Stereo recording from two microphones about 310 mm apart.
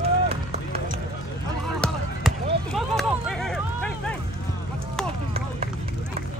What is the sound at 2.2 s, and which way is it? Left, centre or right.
Basketball bounce, centre.